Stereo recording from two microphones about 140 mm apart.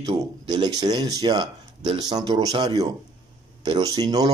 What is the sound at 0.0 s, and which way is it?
Speech, 30° right (ahead or behind).